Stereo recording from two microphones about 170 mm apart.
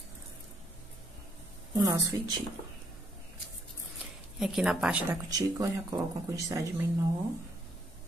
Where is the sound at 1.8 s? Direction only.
20° right (ahead or behind).